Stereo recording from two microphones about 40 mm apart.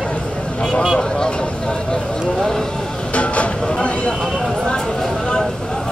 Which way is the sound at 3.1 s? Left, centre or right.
Left.